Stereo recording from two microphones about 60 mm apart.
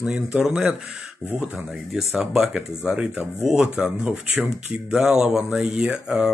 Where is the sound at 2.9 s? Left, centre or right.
Centre.